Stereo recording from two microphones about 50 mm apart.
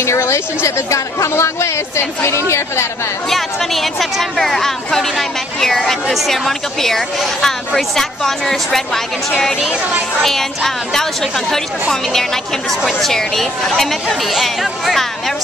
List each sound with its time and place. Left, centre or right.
0.0 s a woman's voice: left
3.3 s a woman's voice: centre
10.2 s a woman's voice: centre